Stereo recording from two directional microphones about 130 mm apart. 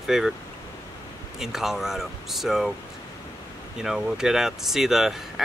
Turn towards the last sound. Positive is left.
turn(degrees=-5)  # may be behind; listen again after turning